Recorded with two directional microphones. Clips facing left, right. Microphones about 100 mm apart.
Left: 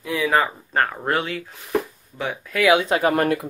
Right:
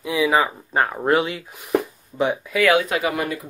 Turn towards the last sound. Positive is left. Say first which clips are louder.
# left 4 dB
turn(degrees=50)  # may be behind; listen again after turning